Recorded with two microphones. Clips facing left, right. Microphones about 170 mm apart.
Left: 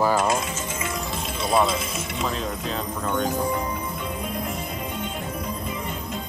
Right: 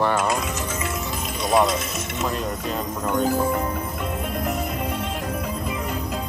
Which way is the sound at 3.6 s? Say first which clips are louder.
Right 2 dB; 55° right (ahead or behind).